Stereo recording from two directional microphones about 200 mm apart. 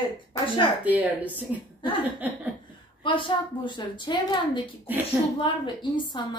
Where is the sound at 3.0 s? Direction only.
25° left (ahead or behind).